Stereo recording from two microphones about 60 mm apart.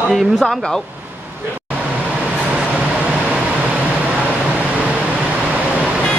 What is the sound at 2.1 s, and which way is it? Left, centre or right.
Vehicle, right.